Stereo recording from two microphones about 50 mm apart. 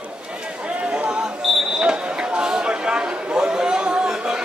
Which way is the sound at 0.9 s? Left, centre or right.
Right.